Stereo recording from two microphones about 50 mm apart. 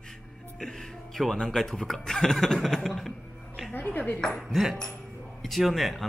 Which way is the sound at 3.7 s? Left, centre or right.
Left.